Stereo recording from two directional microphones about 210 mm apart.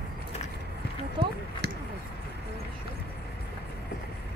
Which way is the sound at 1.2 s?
25° right (ahead or behind).